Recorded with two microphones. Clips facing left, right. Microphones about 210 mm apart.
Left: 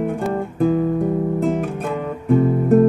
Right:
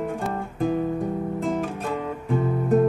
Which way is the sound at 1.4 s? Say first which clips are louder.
Left 6 dB; 60° left (ahead or behind).